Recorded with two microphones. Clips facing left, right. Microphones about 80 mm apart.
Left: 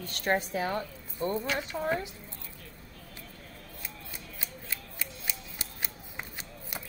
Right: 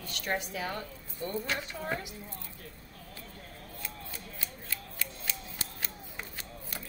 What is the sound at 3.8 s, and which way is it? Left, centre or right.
Shuffling cards, left.